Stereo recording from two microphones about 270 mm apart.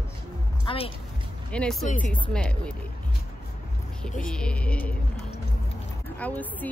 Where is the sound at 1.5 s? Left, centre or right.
Centre.